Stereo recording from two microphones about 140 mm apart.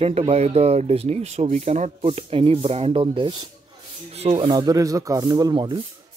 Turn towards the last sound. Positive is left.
turn(degrees=-30)  # may be behind; listen again after turning